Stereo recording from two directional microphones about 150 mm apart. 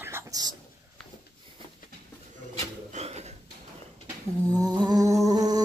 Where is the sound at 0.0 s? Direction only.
20° right (ahead or behind).